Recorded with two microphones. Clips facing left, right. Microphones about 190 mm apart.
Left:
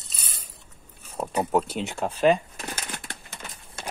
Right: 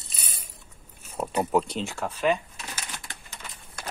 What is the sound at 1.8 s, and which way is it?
Speech, 20° left (ahead or behind).